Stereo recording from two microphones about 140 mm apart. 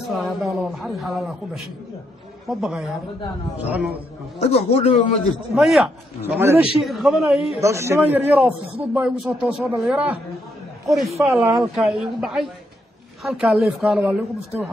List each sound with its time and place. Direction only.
0.1 s a man's voice: centre (ahead or behind)
4.4 s a man's voice: 45° left (ahead or behind)
5.5 s a man's voice: centre (ahead or behind)
6.2 s a man's voice: 15° right (ahead or behind)
6.8 s a man's voice: centre (ahead or behind)
7.6 s a man's voice: 20° right (ahead or behind)
11.2 s a man's voice: centre (ahead or behind)